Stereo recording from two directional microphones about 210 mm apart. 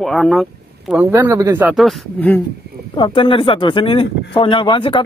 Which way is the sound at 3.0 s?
25° left (ahead or behind).